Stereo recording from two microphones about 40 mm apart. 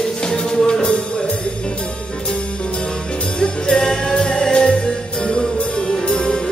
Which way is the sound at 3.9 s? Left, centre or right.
Centre.